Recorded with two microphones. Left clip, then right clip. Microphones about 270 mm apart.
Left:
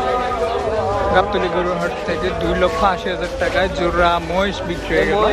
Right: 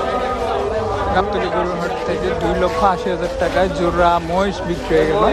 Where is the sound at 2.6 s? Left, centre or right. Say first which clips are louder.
Even; centre.